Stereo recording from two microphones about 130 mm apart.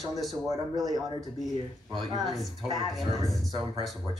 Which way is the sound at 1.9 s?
35° right (ahead or behind).